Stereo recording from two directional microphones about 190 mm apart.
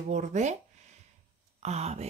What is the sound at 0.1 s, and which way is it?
Speech, 40° right (ahead or behind).